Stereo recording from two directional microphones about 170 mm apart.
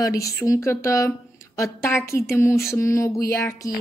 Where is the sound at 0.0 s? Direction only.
20° left (ahead or behind).